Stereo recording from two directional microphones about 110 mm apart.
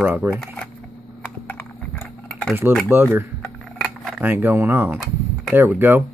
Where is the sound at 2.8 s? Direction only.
20° right (ahead or behind).